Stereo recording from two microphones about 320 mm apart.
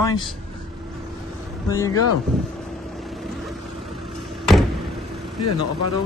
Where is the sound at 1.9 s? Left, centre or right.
Left.